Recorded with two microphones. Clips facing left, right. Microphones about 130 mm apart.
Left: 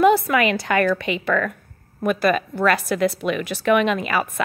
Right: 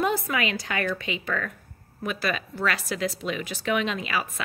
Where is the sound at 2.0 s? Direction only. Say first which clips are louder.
Left 10 dB; 50° left (ahead or behind).